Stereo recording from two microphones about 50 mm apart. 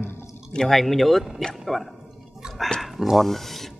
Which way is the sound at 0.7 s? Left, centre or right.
Centre.